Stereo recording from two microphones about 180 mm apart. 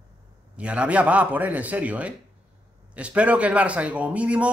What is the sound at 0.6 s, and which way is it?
A man's voice, 5° right (ahead or behind).